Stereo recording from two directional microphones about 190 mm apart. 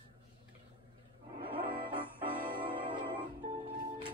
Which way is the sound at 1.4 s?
25° right (ahead or behind).